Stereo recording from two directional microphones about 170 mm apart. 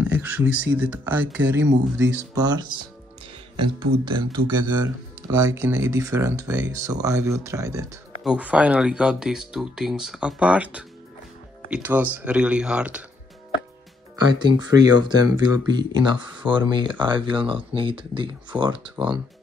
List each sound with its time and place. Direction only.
0.0 s speech: 10° right (ahead or behind)
2.3 s speech: 25° right (ahead or behind)
8.2 s speech: 5° right (ahead or behind)
14.7 s speech: 25° right (ahead or behind)
18.9 s speech: 5° right (ahead or behind)